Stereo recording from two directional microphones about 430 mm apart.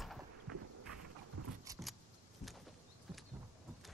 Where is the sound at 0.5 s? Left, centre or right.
Right.